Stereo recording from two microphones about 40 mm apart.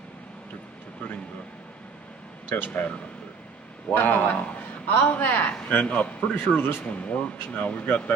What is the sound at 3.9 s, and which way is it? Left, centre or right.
Speech, left.